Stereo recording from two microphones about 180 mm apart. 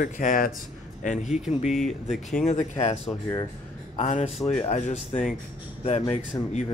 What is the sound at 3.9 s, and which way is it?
Speech, 40° left (ahead or behind).